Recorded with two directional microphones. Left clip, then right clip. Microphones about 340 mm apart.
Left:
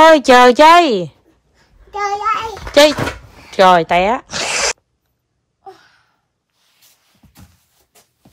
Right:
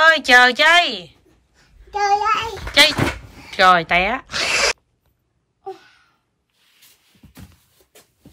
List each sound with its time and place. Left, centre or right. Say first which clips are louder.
0.0 s speech: left 5 dB; centre
1.9 s speech: even; centre
2.7 s speech: left 4 dB; centre
7.2 s a sound: right 2 dB; centre